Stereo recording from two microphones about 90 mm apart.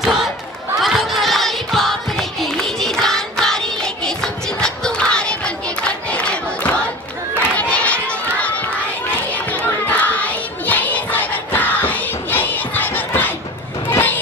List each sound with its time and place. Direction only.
0.0 s a sound: centre (ahead or behind)
0.7 s music: centre (ahead or behind)
7.5 s run: 15° left (ahead or behind)
9.3 s music: 15° left (ahead or behind)
13.8 s vehicle: 20° left (ahead or behind)